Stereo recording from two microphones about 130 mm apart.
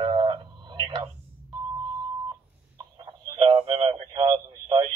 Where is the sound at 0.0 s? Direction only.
40° right (ahead or behind).